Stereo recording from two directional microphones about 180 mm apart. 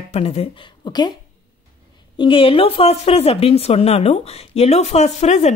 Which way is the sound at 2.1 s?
30° left (ahead or behind).